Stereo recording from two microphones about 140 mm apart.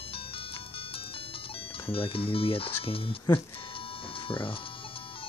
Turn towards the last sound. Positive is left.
turn(degrees=40)  # may be behind; listen again after turning